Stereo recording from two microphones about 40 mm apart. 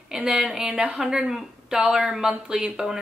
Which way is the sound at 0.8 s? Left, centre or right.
Right.